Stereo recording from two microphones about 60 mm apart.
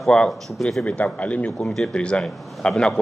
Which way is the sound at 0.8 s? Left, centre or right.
Left.